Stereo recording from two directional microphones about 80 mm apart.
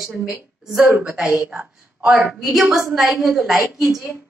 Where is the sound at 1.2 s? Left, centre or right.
Right.